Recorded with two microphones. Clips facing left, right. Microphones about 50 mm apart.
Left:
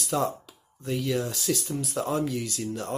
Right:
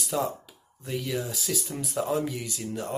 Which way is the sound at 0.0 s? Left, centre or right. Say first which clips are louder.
Left 2 dB; centre.